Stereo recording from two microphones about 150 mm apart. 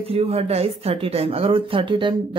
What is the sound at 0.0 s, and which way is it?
Speech, 40° right (ahead or behind).